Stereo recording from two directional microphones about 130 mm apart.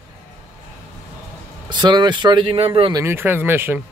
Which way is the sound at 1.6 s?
35° right (ahead or behind).